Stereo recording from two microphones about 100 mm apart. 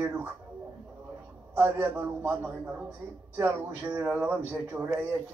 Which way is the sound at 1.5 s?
20° right (ahead or behind).